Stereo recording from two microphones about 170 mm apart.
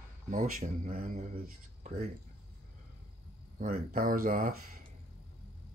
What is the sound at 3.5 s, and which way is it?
Speech, 55° right (ahead or behind).